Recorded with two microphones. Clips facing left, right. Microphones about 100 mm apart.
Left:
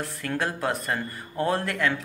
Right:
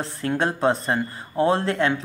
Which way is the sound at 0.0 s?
25° right (ahead or behind).